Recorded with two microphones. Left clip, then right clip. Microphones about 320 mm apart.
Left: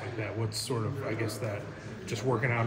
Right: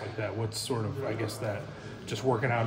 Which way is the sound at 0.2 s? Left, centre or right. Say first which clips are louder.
Right 2 dB; right.